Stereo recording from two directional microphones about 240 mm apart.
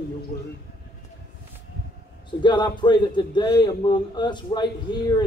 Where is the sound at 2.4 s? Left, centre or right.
Centre.